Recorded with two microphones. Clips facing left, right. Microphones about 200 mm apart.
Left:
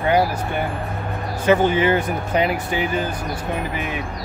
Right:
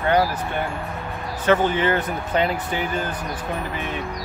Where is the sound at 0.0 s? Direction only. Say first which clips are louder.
Left 1 dB; 15° left (ahead or behind).